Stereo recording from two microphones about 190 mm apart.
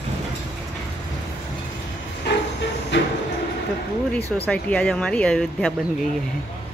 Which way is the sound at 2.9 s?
70° left (ahead or behind).